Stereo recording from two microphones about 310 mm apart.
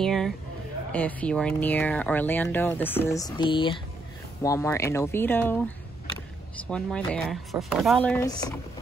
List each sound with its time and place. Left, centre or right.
0.0 s a sound: centre
0.9 s speech: centre
6.7 s speech: centre